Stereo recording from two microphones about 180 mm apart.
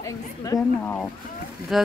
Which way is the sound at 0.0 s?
15° left (ahead or behind).